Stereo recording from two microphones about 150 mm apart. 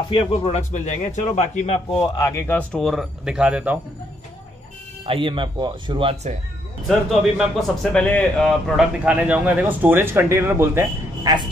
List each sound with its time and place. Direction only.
0.1 s a man's voice: 35° left (ahead or behind)
2.1 s speech: 20° left (ahead or behind); by 3.8 s 10° right (ahead or behind)
5.0 s speech: 35° right (ahead or behind)
6.9 s a man's voice: centre (ahead or behind); by 11.3 s 15° right (ahead or behind)